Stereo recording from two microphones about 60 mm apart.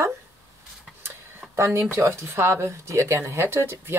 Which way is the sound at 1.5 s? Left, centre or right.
Right.